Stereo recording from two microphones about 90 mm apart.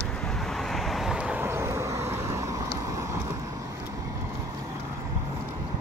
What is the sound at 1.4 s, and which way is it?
Vehicle, 25° right (ahead or behind).